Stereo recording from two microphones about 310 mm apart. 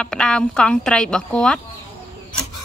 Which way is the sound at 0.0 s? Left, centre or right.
Centre.